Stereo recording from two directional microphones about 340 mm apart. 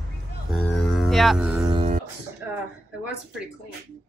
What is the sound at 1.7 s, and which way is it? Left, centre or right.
Beatboxing, centre.